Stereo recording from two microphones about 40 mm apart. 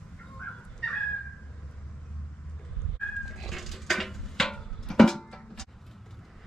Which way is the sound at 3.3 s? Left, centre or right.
Centre.